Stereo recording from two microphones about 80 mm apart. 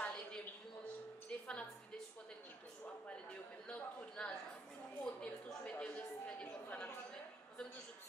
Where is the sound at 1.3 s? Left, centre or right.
Centre.